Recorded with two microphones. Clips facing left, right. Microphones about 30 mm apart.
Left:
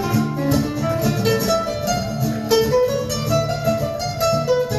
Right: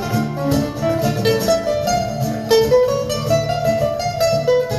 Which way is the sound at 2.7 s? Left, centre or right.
Right.